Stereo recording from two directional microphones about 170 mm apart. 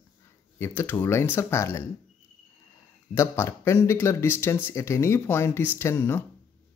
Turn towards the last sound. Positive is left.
turn(degrees=15)  # may be behind; listen again after turning